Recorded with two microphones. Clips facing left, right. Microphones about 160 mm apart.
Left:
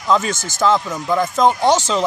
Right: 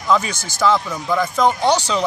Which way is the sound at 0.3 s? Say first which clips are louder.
Left 5 dB; 45° left (ahead or behind).